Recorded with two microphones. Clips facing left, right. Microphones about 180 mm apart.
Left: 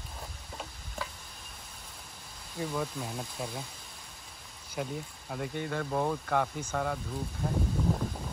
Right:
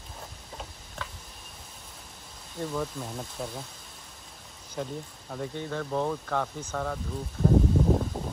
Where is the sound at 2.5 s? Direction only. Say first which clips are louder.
Right 2 dB; 5° left (ahead or behind).